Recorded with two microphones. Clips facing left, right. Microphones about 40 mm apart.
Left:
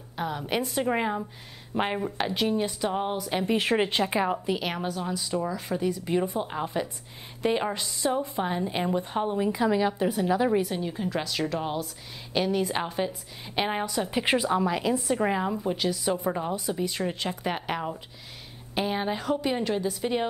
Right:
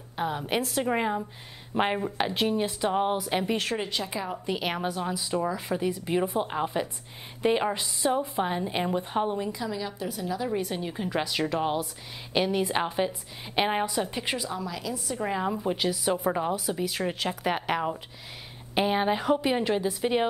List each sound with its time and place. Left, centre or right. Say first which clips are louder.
0.1 s a woman's voice: right 1 dB; centre
0.7 s a woman's voice: left 1 dB; centre
3.7 s a woman's voice: left 6 dB; left
4.5 s a woman's voice: even; centre
9.5 s a woman's voice: left 8 dB; left
10.8 s a woman's voice: even; centre
14.2 s a woman's voice: left 7 dB; left
15.4 s a woman's voice: even; centre
16.5 s a woman's voice: even; centre